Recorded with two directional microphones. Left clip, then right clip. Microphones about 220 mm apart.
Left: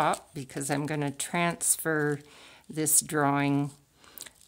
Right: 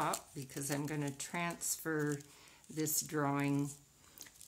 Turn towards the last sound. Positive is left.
turn(degrees=50)  # may be behind; listen again after turning